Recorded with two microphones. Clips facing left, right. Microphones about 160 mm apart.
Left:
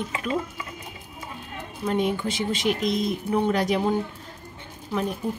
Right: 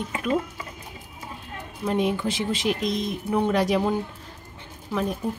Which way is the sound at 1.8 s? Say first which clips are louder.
Right 1 dB; centre (ahead or behind).